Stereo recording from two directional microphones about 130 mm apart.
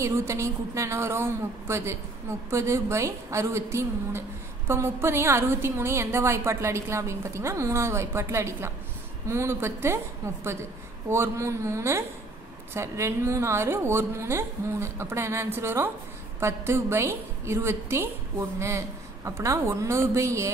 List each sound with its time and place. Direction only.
0.0 s a woman's voice: 20° right (ahead or behind)